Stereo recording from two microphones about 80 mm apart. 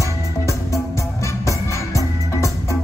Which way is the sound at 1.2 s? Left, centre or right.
Left.